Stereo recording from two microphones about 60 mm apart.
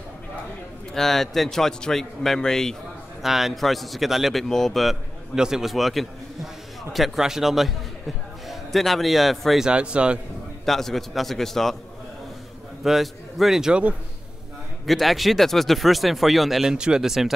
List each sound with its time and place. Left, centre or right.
0.9 s speech: centre
3.2 s speech: centre
5.3 s a man's voice: centre
9.7 s a man's voice: centre
10.6 s speech: centre
12.8 s a man's voice: centre
14.9 s speech: centre